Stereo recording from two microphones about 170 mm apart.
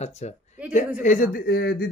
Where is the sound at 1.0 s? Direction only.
50° left (ahead or behind); by 1.9 s 70° left (ahead or behind).